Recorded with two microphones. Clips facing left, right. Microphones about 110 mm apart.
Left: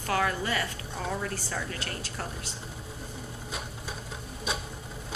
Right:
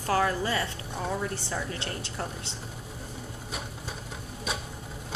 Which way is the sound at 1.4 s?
20° right (ahead or behind).